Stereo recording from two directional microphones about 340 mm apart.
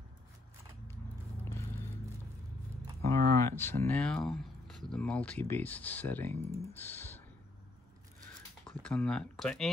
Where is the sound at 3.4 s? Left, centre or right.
Centre.